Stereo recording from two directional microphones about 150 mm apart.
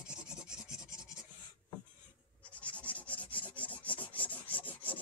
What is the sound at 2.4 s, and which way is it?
Scratch, 10° left (ahead or behind).